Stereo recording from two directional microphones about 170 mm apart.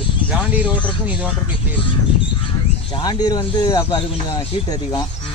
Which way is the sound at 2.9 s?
25° left (ahead or behind).